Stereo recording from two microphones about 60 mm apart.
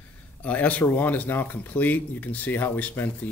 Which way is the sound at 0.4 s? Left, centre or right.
Left.